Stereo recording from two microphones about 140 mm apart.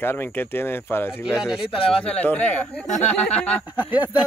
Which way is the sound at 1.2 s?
5° right (ahead or behind).